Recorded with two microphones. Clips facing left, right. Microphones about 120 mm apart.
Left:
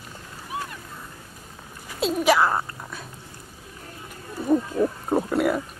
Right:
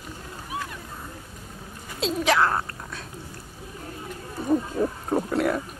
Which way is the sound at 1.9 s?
5° left (ahead or behind).